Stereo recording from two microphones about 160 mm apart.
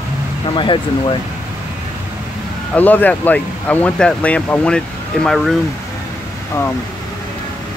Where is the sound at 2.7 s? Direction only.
10° left (ahead or behind).